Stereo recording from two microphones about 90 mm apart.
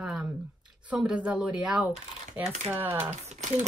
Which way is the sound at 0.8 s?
15° right (ahead or behind).